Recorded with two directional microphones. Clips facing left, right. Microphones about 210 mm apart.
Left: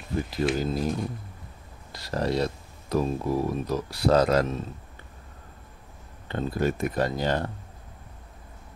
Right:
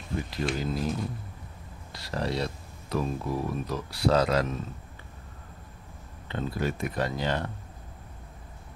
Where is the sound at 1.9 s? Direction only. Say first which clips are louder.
Left 4 dB; 45° left (ahead or behind).